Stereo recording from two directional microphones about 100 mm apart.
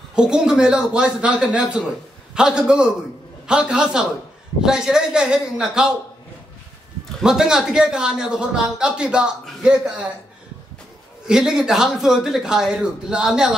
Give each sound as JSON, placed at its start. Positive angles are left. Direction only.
{"t": 0.1, "sound": "a man's voice", "side_deg": -10}
{"t": 7.2, "sound": "a man's voice", "side_deg": -5}
{"t": 11.2, "sound": "speech", "side_deg": -5}